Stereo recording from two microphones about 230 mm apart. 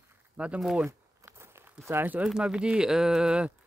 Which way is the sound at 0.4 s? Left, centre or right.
Centre.